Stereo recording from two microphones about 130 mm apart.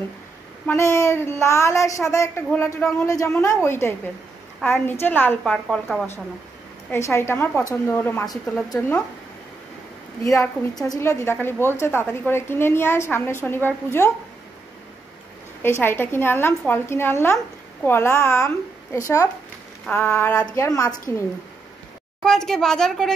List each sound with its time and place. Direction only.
0.7 s speech: 20° left (ahead or behind)
4.6 s a woman's voice: 5° left (ahead or behind)
5.0 s a woman's voice: 15° left (ahead or behind)
5.4 s a woman's voice: 5° left (ahead or behind)
6.9 s a woman's voice: 20° left (ahead or behind)
10.2 s a woman's voice: 25° left (ahead or behind)
15.6 s a woman's voice: 20° left (ahead or behind)
20.5 s speech: 25° left (ahead or behind)
22.2 s a woman's voice: 5° left (ahead or behind)